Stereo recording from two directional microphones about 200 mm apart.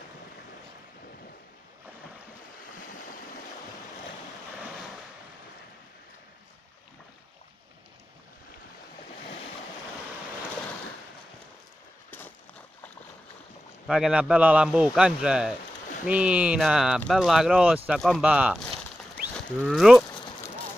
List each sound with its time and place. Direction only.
2.8 s waves: 45° left (ahead or behind)
13.8 s speech: centre (ahead or behind)
18.8 s a sound: 5° right (ahead or behind)
19.6 s speech: centre (ahead or behind)